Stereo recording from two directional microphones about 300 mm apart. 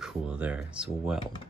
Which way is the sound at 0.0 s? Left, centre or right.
Centre.